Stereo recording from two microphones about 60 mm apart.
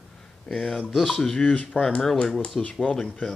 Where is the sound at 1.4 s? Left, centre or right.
Left; by 2.4 s centre.